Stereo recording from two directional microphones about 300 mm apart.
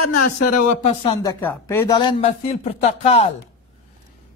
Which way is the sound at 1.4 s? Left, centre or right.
Centre.